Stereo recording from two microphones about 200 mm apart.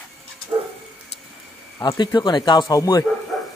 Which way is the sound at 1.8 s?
20° left (ahead or behind).